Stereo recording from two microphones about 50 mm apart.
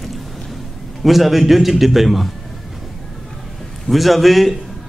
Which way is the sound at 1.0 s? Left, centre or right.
Centre.